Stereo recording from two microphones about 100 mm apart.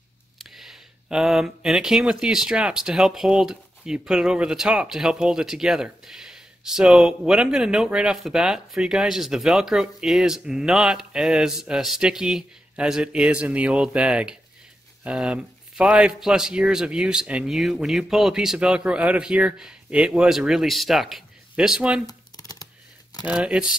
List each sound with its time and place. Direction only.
0.4 s a man's voice: 5° right (ahead or behind)
22.0 s computer keyboard: 40° left (ahead or behind)
23.2 s a man's voice: 10° right (ahead or behind)